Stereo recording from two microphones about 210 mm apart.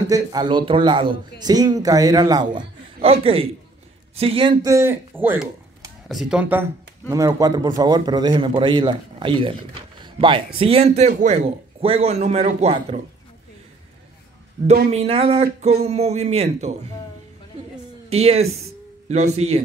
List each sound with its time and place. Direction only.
0.1 s speech: 20° right (ahead or behind)
14.9 s speech: 30° right (ahead or behind)
18.1 s a man's voice: 30° right (ahead or behind)